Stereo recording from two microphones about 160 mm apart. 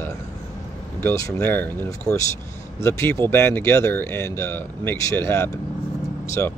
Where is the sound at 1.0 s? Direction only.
20° left (ahead or behind).